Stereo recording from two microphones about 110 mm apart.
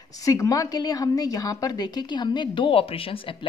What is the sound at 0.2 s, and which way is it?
A woman's voice, 30° left (ahead or behind).